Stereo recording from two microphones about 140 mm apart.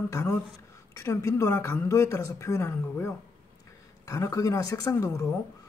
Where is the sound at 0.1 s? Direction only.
20° left (ahead or behind).